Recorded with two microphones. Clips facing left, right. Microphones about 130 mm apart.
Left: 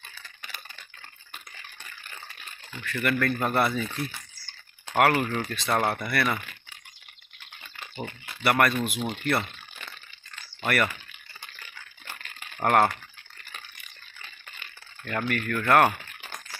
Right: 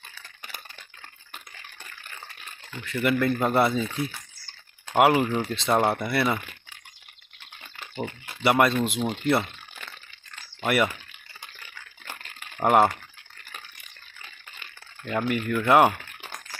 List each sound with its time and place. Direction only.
2.8 s speech: 15° right (ahead or behind)
8.4 s speech: 20° right (ahead or behind)
12.5 s speech: 10° right (ahead or behind)
15.0 s speech: 15° right (ahead or behind)